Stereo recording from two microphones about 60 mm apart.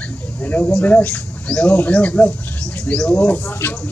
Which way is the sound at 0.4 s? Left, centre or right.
Left.